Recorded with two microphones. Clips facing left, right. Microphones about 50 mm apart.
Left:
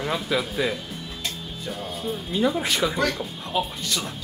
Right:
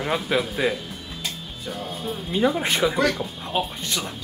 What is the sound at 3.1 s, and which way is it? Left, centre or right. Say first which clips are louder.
Speech: right 1 dB; right.